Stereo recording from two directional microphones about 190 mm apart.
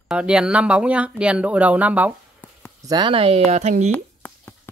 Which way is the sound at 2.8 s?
25° right (ahead or behind).